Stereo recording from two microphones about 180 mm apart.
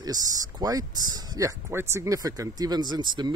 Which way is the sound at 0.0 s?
20° right (ahead or behind).